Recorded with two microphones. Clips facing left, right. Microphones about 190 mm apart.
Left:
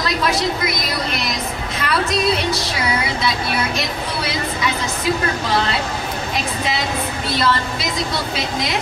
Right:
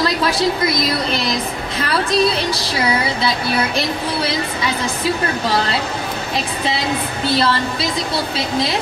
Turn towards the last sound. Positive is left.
turn(degrees=-30)  # may be behind; listen again after turning